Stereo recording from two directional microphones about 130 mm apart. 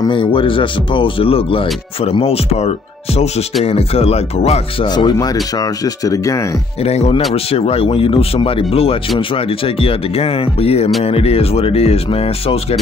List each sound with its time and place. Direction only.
0.0 s speech: 40° left (ahead or behind)
4.8 s speech: 35° left (ahead or behind)
6.8 s speech: 50° left (ahead or behind)